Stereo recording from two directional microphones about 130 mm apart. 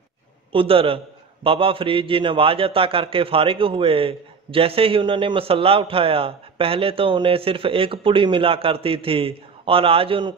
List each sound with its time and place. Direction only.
0.5 s a man's voice: 45° right (ahead or behind)